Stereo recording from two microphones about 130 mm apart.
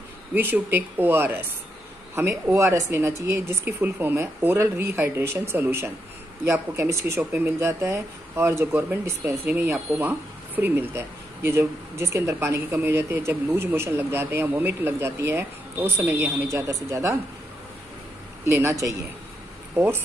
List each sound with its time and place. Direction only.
0.3 s speech: 15° right (ahead or behind)
18.4 s speech: 20° right (ahead or behind)